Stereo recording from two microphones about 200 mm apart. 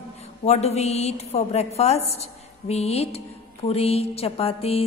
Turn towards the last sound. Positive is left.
turn(degrees=30)  # may be behind; listen again after turning